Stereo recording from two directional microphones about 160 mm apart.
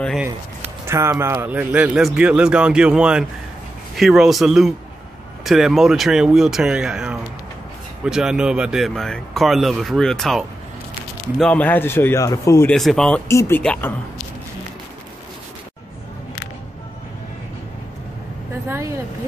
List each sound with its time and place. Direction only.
0.8 s a man's voice: 15° right (ahead or behind); by 12.7 s 15° left (ahead or behind)
12.7 s speech: 5° left (ahead or behind)
13.3 s speech: 15° left (ahead or behind)
18.7 s vehicle: 20° right (ahead or behind)